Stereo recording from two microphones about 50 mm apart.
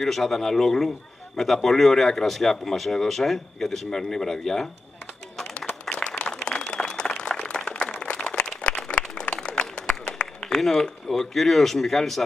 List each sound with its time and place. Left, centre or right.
0.0 s a man's voice: centre
5.9 s applause: centre
8.0 s a sound: left